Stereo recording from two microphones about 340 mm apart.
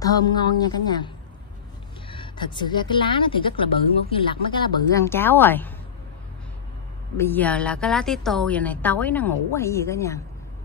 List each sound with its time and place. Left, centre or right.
0.0 s a woman's voice: centre
7.2 s a woman's voice: centre